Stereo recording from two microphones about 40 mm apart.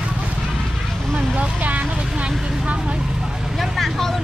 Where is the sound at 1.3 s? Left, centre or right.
Right.